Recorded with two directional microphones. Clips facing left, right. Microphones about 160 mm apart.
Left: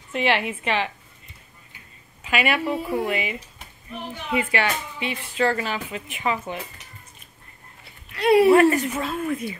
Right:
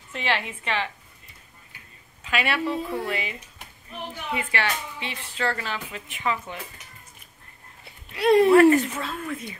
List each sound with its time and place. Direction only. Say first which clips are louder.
0.1 s speech: left 5 dB; 15° left (ahead or behind)
2.2 s speech: left 3 dB; 10° left (ahead or behind)
4.4 s speech: left 5 dB; 15° left (ahead or behind)
8.3 s speech: left 2 dB; 10° left (ahead or behind)
8.5 s a woman's voice: right 1 dB; 20° left (ahead or behind)